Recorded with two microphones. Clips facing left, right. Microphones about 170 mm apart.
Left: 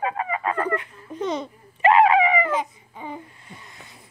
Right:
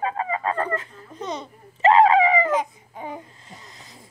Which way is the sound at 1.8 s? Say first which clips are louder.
Right 1 dB; 25° right (ahead or behind).